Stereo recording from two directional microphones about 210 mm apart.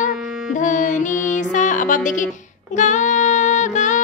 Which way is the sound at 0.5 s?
35° left (ahead or behind).